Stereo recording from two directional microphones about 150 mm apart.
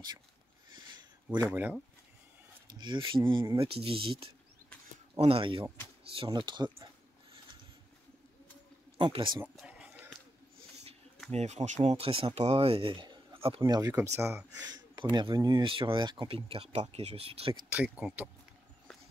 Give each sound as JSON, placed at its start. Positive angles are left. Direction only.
{"t": 1.5, "sound": "speech", "side_deg": -10}
{"t": 2.7, "sound": "speech", "side_deg": -30}
{"t": 8.9, "sound": "speech", "side_deg": -35}
{"t": 9.6, "sound": "a sound", "side_deg": -5}
{"t": 11.2, "sound": "speech", "side_deg": -45}
{"t": 13.9, "sound": "speech", "side_deg": -15}
{"t": 14.7, "sound": "speech", "side_deg": -30}
{"t": 17.6, "sound": "speech", "side_deg": -10}